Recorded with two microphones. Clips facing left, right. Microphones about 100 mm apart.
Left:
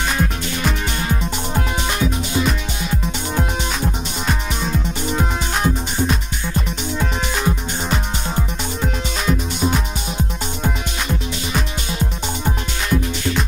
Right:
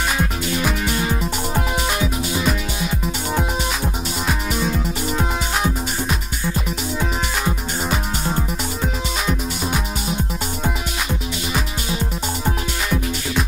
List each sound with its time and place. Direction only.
0.2 s music: 5° right (ahead or behind)